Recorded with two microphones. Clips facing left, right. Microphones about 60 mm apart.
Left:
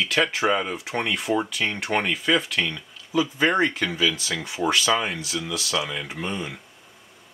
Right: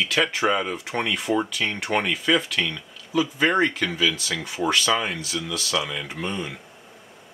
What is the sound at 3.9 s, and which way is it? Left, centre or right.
Speech, centre.